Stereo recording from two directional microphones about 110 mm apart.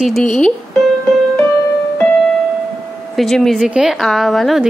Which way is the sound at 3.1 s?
Centre (ahead or behind).